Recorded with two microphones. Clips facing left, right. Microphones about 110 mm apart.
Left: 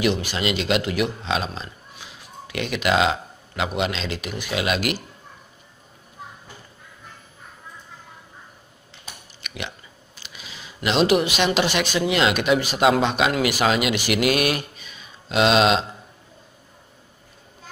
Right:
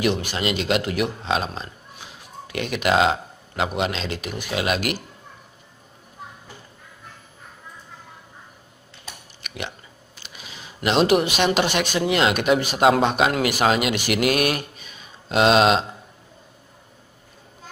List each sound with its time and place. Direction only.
0.0 s speech: 50° right (ahead or behind)
9.4 s a sound: 45° right (ahead or behind)
10.2 s speech: 50° right (ahead or behind)